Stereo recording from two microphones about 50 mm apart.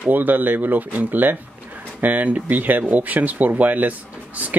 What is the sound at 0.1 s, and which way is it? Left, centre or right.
Speech, right.